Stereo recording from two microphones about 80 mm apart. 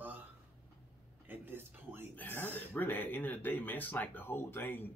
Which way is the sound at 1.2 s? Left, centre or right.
Right.